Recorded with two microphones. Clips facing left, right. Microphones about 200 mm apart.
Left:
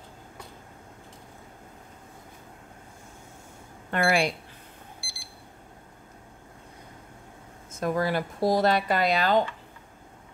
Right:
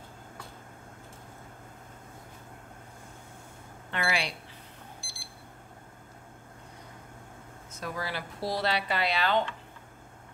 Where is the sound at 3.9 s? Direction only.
50° left (ahead or behind).